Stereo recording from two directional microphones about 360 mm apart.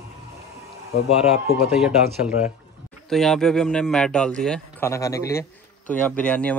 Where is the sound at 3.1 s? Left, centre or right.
Centre.